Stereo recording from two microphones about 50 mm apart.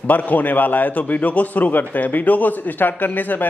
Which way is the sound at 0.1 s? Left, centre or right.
Left.